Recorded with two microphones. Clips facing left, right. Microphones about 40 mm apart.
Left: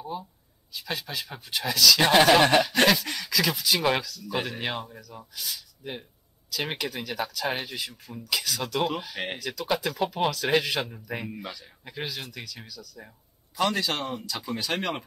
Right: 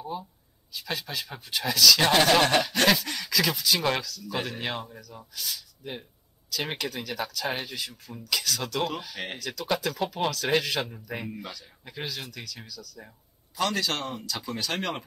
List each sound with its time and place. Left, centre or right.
0.0 s speech: centre